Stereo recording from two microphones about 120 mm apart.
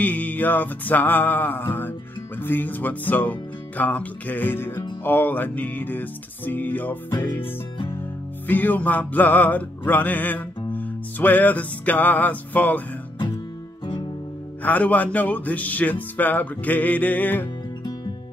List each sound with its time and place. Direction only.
0.0 s music: 15° left (ahead or behind)
8.5 s music: 15° left (ahead or behind)
14.6 s music: 15° left (ahead or behind)